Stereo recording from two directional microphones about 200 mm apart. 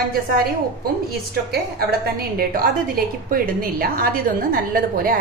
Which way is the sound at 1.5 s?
50° right (ahead or behind).